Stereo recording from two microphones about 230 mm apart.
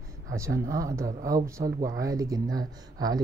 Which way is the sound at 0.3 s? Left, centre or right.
Centre.